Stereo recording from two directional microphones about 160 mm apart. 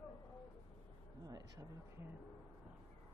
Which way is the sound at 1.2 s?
25° right (ahead or behind).